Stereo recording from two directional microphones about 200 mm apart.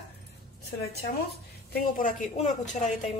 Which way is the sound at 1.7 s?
45° left (ahead or behind).